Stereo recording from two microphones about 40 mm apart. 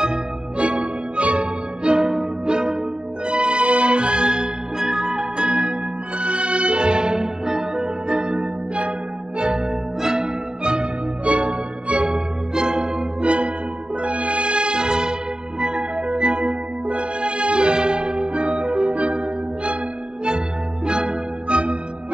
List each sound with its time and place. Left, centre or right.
0.6 s music: right
15.6 s organ: right
16.2 s music: right